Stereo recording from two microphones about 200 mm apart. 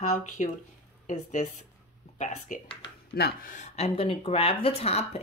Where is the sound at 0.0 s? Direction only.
40° left (ahead or behind).